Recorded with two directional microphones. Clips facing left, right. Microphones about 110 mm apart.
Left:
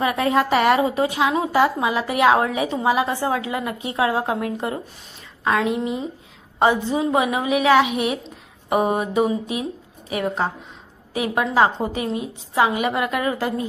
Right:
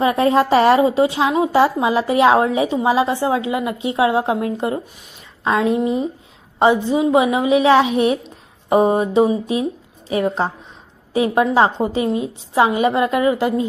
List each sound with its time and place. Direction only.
0.0 s a woman's voice: 30° right (ahead or behind)
6.6 s a woman's voice: 15° right (ahead or behind)